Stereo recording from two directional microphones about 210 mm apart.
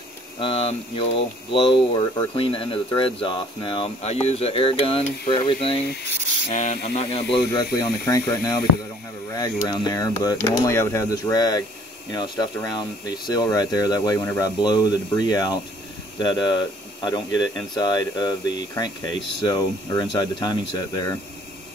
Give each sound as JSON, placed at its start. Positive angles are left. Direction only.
{"t": 0.4, "sound": "speech", "side_deg": 25}
{"t": 6.5, "sound": "speech", "side_deg": 40}
{"t": 7.0, "sound": "speech", "side_deg": 25}
{"t": 7.5, "sound": "speech", "side_deg": 15}
{"t": 19.4, "sound": "speech", "side_deg": 20}